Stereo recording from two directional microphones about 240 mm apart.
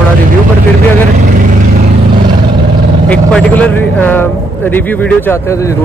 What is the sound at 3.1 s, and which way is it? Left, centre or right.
A man's voice, centre.